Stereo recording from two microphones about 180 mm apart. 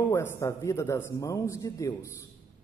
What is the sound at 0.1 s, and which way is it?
A man's voice, 15° left (ahead or behind).